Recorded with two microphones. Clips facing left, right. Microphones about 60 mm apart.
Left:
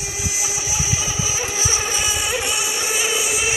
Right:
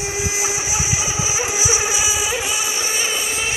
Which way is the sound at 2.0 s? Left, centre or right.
Centre.